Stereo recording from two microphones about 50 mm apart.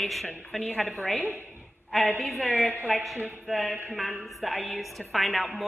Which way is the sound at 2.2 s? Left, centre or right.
Centre.